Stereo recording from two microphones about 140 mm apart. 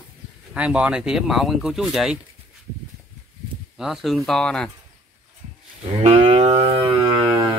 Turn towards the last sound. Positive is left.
turn(degrees=-40)  # may be behind; listen again after turning